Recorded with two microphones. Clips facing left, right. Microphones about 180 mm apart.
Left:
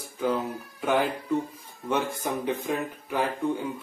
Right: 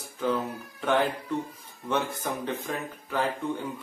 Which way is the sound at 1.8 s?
10° left (ahead or behind).